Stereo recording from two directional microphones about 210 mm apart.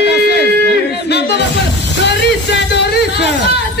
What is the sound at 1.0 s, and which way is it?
Music, 50° left (ahead or behind).